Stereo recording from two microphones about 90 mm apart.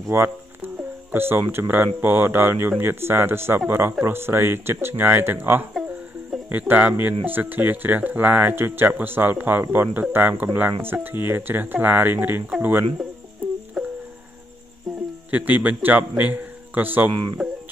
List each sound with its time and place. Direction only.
0.1 s speech: 25° right (ahead or behind)
13.8 s music: centre (ahead or behind)
15.3 s speech: 20° right (ahead or behind)
17.1 s speech: 55° right (ahead or behind)